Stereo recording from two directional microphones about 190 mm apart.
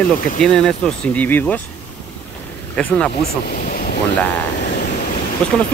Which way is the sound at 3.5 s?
45° left (ahead or behind).